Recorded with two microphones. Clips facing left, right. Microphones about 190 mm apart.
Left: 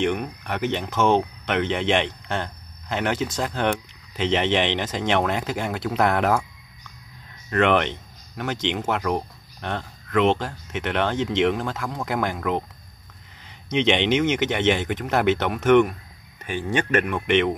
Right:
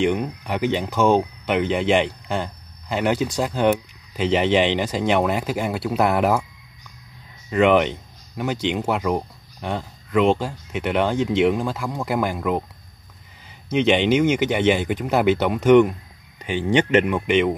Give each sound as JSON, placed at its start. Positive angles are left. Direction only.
{"t": 0.0, "sound": "speech", "side_deg": -15}
{"t": 7.4, "sound": "speech", "side_deg": -10}